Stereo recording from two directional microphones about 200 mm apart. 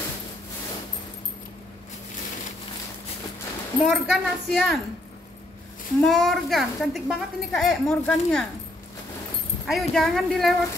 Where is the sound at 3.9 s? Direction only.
Centre (ahead or behind).